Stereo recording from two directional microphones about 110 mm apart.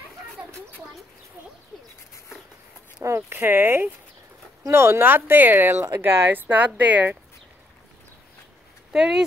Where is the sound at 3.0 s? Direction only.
25° right (ahead or behind).